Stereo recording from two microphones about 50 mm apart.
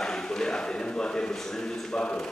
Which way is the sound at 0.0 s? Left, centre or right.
Centre.